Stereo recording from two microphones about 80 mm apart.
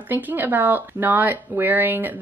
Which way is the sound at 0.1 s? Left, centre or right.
Right.